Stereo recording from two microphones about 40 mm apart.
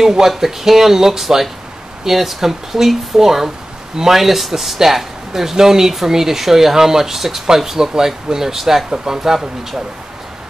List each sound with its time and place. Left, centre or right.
0.0 s speech: centre